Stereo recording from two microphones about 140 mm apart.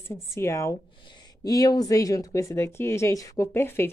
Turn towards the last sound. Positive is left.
turn(degrees=15)  # may be behind; listen again after turning